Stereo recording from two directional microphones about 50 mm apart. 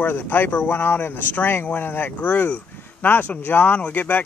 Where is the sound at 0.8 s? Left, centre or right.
Left.